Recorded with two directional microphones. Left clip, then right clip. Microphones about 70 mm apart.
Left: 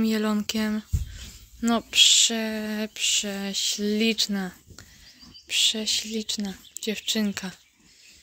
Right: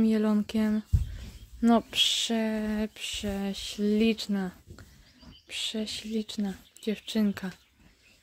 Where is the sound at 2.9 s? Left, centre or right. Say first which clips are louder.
Left 9 dB; centre.